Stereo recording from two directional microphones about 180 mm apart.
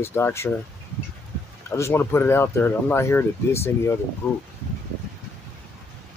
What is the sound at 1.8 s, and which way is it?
Speech, 15° left (ahead or behind).